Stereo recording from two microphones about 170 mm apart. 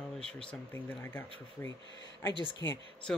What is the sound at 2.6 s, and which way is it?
Speech, 20° left (ahead or behind).